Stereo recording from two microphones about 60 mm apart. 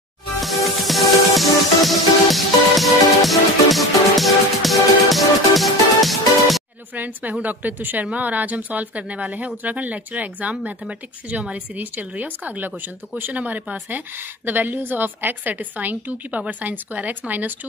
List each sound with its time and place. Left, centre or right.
0.4 s music: centre
7.0 s speech: right